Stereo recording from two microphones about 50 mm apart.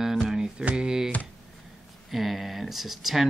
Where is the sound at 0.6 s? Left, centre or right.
Right.